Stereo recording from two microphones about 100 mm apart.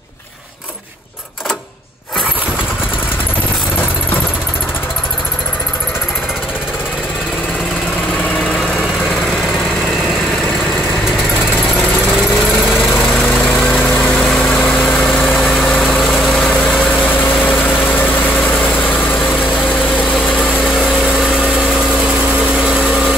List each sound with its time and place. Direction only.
11.8 s engine: 20° left (ahead or behind)
12.6 s lawn mower: 5° right (ahead or behind)
13.2 s lawn mower: 20° left (ahead or behind)
13.7 s vehicle: 20° left (ahead or behind)
15.0 s vehicle: centre (ahead or behind)
17.1 s vehicle: 20° left (ahead or behind)
20.2 s vehicle: 5° right (ahead or behind)